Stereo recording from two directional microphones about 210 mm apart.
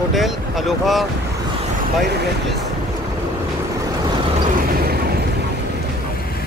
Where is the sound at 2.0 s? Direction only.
50° right (ahead or behind).